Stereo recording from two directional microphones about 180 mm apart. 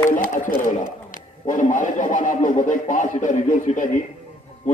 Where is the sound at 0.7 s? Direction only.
45° left (ahead or behind).